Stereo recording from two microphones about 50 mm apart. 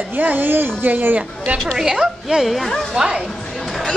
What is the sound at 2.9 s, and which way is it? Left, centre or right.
Speech, centre.